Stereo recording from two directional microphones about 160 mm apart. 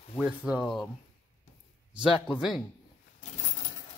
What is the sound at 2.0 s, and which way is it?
Speech, 5° right (ahead or behind).